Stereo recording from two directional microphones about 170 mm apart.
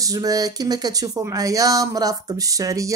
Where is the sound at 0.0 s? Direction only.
20° right (ahead or behind).